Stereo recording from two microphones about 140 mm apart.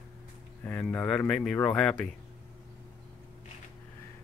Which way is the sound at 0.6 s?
10° left (ahead or behind).